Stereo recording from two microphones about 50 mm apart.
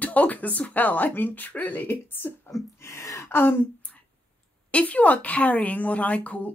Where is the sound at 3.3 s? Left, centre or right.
Left.